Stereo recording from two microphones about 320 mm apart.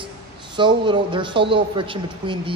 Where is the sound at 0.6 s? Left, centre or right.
Centre.